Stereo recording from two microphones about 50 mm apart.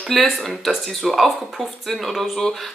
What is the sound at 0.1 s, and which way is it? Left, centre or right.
Speech, centre.